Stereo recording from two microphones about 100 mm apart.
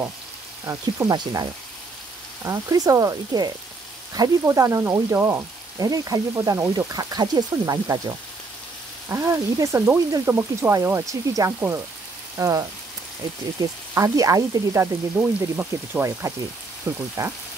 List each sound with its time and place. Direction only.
0.7 s frying: 30° right (ahead or behind)
1.1 s speech: 45° right (ahead or behind)
2.4 s frying: 35° right (ahead or behind)
6.9 s frying: 40° right (ahead or behind)
9.1 s speech: 30° right (ahead or behind)
12.4 s frying: 35° right (ahead or behind); by 16.0 s 20° right (ahead or behind)
16.0 s speech: 30° right (ahead or behind)